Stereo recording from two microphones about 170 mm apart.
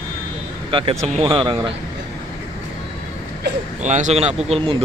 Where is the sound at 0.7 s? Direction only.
35° right (ahead or behind).